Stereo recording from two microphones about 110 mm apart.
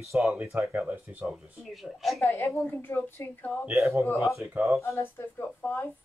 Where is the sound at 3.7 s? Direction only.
25° right (ahead or behind).